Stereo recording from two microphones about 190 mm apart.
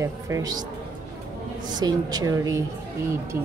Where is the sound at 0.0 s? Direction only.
15° right (ahead or behind).